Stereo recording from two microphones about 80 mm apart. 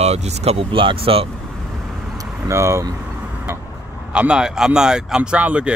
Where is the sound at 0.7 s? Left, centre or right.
Right.